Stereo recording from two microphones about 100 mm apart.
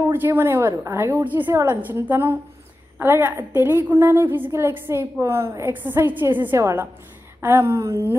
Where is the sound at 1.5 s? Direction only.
30° right (ahead or behind).